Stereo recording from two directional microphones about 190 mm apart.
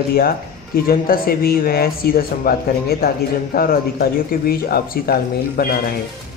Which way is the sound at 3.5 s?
50° left (ahead or behind).